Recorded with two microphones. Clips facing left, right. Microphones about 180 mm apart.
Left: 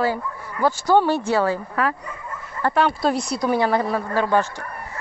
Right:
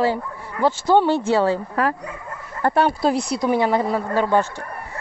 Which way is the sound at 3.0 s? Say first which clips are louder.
Right 2 dB; 20° right (ahead or behind).